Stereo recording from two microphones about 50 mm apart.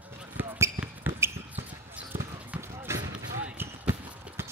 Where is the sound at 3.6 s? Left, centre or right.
Right.